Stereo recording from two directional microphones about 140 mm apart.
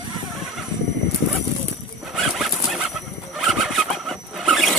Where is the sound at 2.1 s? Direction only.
Centre (ahead or behind).